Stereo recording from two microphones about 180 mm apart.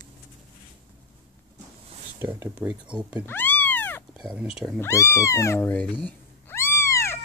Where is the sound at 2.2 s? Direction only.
10° right (ahead or behind).